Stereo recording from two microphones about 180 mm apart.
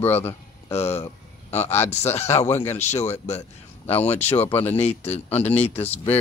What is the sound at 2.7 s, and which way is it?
Speech, 40° left (ahead or behind).